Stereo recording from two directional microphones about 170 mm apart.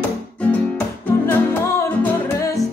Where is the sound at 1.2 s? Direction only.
10° left (ahead or behind).